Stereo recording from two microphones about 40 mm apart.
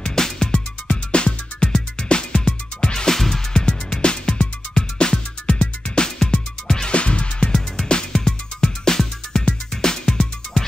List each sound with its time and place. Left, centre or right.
0.0 s music: centre
6.9 s music: left